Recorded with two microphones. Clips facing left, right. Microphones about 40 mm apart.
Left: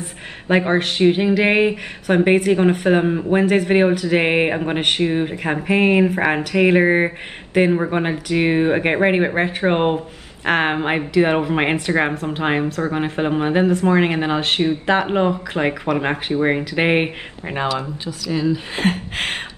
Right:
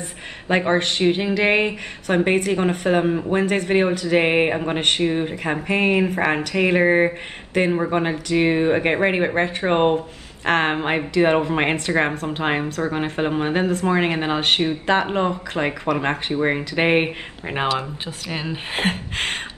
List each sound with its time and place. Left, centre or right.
0.5 s speech: centre
15.0 s speech: centre
17.7 s a woman's voice: right